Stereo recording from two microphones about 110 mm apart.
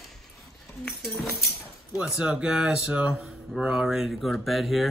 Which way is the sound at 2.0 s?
5° right (ahead or behind).